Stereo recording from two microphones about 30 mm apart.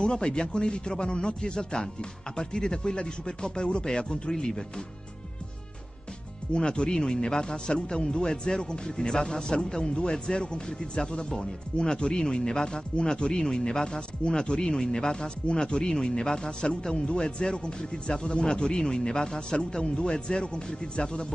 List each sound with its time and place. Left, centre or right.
0.0 s speech: left
6.5 s speech: left
11.1 s speech: left
14.6 s speech: centre
16.9 s speech: left
19.8 s speech: left
20.1 s speech: left